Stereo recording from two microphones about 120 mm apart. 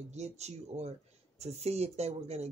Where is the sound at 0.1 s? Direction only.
65° right (ahead or behind).